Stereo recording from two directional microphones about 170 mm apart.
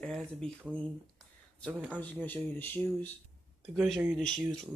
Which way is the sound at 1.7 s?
10° right (ahead or behind).